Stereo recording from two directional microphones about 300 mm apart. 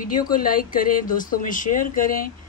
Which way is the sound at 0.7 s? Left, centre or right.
Left.